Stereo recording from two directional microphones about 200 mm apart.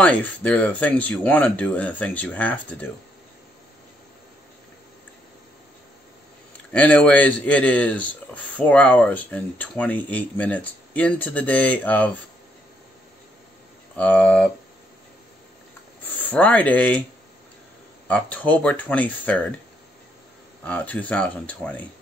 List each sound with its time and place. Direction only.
0.0 s speech: 5° left (ahead or behind)
6.7 s speech: 5° left (ahead or behind)
13.9 s speech: 5° left (ahead or behind)
16.0 s speech: 10° left (ahead or behind)
18.0 s speech: 5° left (ahead or behind)
20.6 s speech: 5° left (ahead or behind)